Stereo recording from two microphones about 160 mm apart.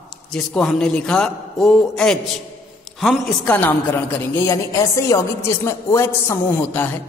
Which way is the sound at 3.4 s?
15° left (ahead or behind).